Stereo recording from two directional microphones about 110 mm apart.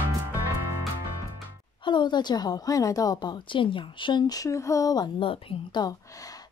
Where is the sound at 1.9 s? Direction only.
45° left (ahead or behind).